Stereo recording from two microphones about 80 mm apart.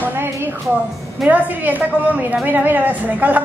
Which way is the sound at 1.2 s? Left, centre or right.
Centre.